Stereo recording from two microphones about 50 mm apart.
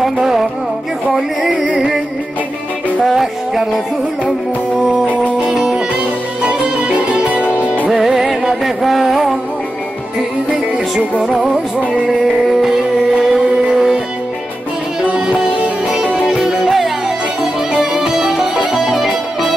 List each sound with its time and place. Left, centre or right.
0.0 s music: centre
1.1 s a sound: centre
3.1 s music: centre
5.5 s music: centre
6.4 s music: right
7.6 s music: left
7.9 s music: centre
11.2 s music: centre
15.0 s music: centre
15.5 s music: right
16.3 s music: centre
18.0 s music: centre